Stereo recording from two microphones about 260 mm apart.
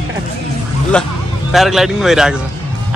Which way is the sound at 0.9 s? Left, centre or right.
Centre.